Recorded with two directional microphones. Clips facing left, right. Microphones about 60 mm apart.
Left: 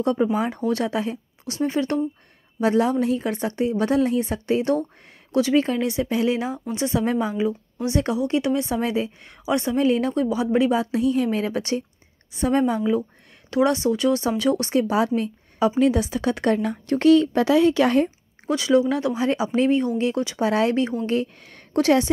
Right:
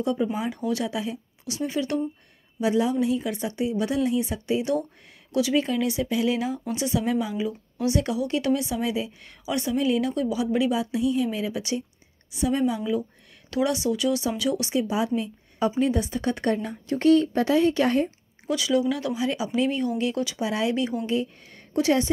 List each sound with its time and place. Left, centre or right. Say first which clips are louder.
0.0 s a woman's voice: left 4 dB; left
8.6 s a woman's voice: left 4 dB; left
15.8 s a woman's voice: left 4 dB; left
18.5 s a woman's voice: left 4 dB; left
20.3 s speech: left 5 dB; left
20.8 s a woman's voice: left 3 dB; left
21.1 s a woman's voice: left 3 dB; left